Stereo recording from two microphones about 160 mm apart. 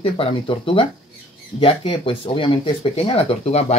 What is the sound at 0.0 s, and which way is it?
Speech, 35° left (ahead or behind).